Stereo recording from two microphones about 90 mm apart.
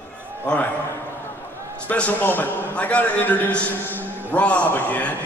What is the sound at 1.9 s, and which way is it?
A man's voice, 20° left (ahead or behind).